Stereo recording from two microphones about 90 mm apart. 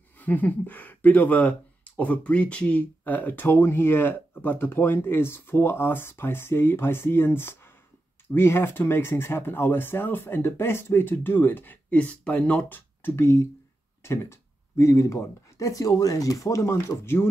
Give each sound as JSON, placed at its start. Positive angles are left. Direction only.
{"t": 0.2, "sound": "speech", "side_deg": 20}